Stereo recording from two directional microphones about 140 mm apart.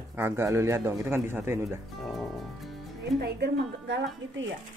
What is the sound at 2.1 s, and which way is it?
Music, centre (ahead or behind).